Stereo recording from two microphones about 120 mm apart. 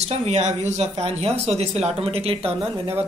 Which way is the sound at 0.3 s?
70° right (ahead or behind).